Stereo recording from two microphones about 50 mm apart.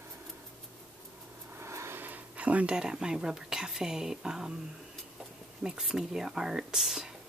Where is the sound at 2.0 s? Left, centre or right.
Right.